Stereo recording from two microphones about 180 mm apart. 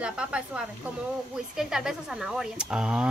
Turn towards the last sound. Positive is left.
turn(degrees=-5)  # may be behind; listen again after turning